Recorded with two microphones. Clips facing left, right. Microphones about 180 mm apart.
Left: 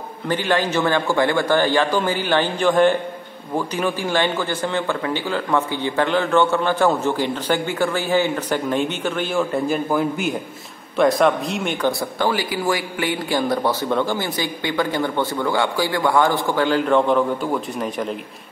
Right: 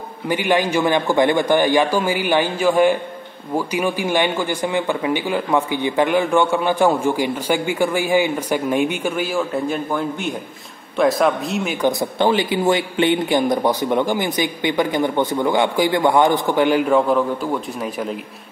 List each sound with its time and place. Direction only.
0.3 s a man's voice: 15° right (ahead or behind)
11.8 s a man's voice: 20° right (ahead or behind); by 18.1 s centre (ahead or behind)